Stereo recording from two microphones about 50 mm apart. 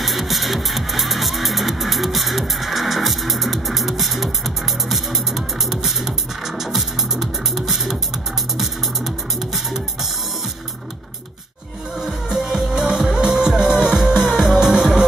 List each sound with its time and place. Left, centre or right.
0.0 s music: centre
12.0 s music: centre